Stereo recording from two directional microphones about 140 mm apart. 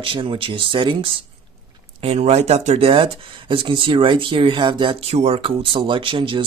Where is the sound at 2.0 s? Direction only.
50° right (ahead or behind).